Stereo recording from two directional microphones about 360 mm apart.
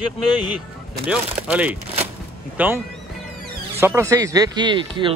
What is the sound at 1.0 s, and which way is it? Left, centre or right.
Speech, centre.